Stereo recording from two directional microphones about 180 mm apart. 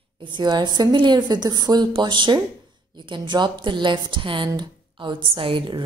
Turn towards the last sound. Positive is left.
turn(degrees=-30)  # may be behind; listen again after turning